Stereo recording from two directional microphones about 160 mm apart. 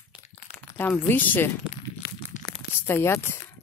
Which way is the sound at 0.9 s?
10° left (ahead or behind).